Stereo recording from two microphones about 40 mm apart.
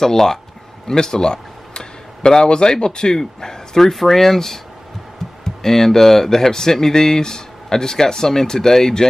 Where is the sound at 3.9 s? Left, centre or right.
Centre.